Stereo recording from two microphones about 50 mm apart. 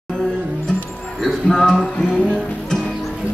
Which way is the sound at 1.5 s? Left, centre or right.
Centre.